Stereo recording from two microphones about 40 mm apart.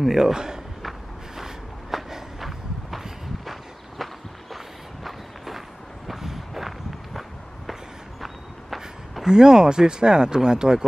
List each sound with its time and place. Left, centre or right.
0.0 s speech: centre
0.8 s walk: centre
6.0 s a sound: centre
8.2 s walk: centre
9.2 s speech: centre